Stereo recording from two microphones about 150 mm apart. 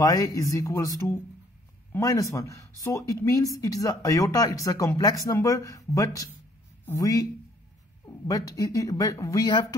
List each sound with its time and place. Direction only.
0.0 s speech: 25° left (ahead or behind)